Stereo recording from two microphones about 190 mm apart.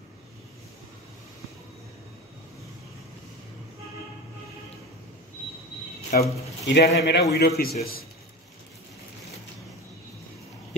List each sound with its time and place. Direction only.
6.1 s speech: 50° left (ahead or behind)
6.6 s a man's voice: 65° left (ahead or behind)